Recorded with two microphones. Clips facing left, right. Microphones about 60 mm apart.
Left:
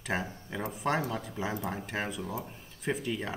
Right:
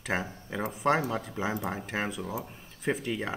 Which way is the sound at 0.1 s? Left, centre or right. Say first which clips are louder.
Right 2 dB; centre.